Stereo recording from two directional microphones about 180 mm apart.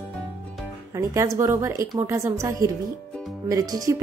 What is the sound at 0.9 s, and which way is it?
Speech, 15° right (ahead or behind).